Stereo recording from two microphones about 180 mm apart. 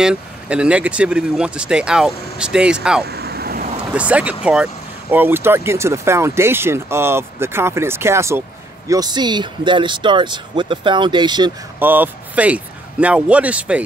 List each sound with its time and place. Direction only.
0.0 s speech: 5° right (ahead or behind)
3.1 s vehicle: 60° right (ahead or behind)
3.9 s speech: 5° right (ahead or behind); by 11.5 s 25° right (ahead or behind)
11.8 s speech: 10° right (ahead or behind)